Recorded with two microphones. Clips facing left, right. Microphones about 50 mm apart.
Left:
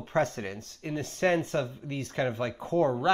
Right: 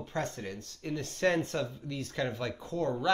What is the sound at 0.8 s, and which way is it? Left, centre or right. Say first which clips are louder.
Speech: left 2 dB; left.